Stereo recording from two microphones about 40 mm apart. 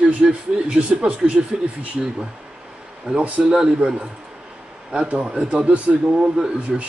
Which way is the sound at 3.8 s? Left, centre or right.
Right.